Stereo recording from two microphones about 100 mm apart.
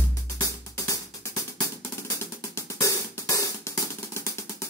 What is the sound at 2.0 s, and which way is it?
Hi-hat, 30° left (ahead or behind).